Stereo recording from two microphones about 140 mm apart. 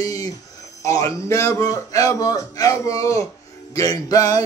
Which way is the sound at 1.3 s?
20° left (ahead or behind).